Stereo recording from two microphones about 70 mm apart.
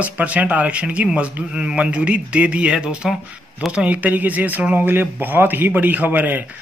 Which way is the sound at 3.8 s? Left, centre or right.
Right.